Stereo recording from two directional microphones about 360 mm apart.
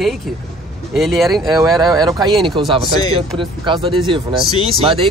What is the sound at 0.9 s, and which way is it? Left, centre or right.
Speech, centre.